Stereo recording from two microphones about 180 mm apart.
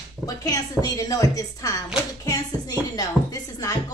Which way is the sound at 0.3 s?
20° left (ahead or behind).